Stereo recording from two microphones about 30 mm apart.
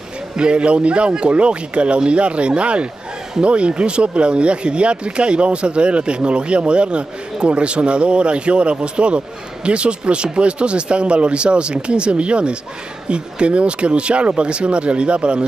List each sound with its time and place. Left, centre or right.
0.4 s speech: right